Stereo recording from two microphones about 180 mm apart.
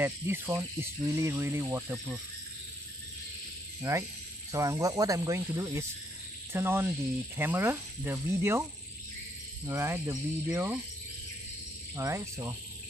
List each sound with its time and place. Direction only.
0.0 s speech: 10° right (ahead or behind)
3.9 s speech: 15° right (ahead or behind)
9.7 s speech: 15° right (ahead or behind)
11.9 s speech: 15° right (ahead or behind)